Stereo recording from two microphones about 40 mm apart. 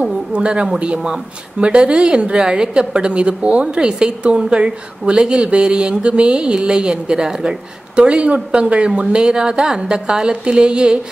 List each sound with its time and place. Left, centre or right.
0.0 s a woman's voice: right
5.1 s a woman's voice: centre